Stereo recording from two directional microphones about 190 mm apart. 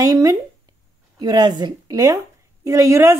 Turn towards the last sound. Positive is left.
turn(degrees=-15)  # may be behind; listen again after turning